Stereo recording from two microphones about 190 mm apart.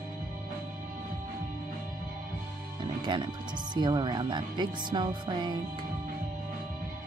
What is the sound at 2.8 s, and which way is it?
Speech, 25° right (ahead or behind).